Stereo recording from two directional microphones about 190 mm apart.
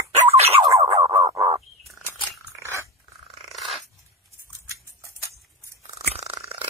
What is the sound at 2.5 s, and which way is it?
Dog, 15° right (ahead or behind).